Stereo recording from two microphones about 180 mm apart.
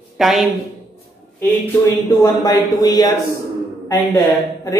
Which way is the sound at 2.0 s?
20° left (ahead or behind).